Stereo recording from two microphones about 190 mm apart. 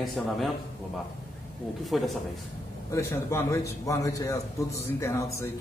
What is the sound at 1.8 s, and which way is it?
Speech, centre (ahead or behind).